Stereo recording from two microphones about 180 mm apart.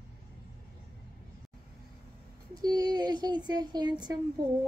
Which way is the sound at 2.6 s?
20° right (ahead or behind).